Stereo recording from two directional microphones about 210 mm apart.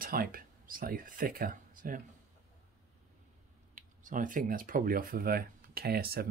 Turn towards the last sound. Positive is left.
turn(degrees=-45)  # may be behind; listen again after turning